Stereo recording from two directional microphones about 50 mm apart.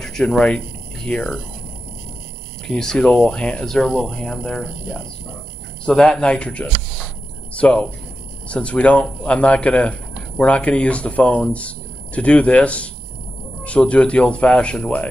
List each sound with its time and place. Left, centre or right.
0.0 s speech: centre
2.7 s speech: centre
3.6 s speech: centre
6.2 s speech: left